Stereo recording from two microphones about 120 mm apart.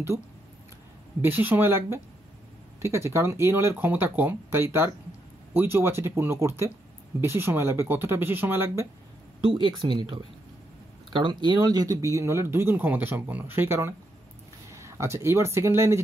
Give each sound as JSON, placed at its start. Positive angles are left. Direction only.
{"t": 1.2, "sound": "speech", "side_deg": -15}
{"t": 9.5, "sound": "speech", "side_deg": -40}